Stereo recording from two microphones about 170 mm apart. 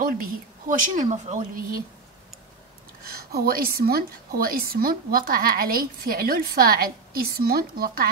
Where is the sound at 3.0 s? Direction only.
60° right (ahead or behind).